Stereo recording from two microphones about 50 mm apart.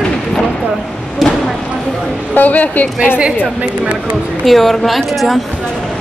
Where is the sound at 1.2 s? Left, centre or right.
Centre.